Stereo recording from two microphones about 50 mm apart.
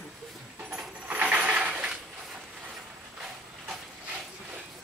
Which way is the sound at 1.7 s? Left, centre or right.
Centre.